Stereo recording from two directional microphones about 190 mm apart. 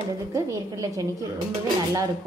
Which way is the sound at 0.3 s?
20° right (ahead or behind).